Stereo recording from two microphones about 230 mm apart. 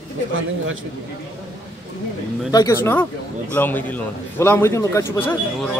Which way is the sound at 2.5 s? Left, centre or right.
Centre.